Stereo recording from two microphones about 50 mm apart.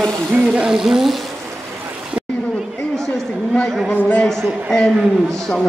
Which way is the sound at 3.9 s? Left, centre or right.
Left.